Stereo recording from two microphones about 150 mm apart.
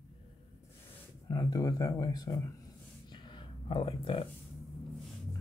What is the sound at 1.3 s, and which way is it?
Speech, 25° left (ahead or behind).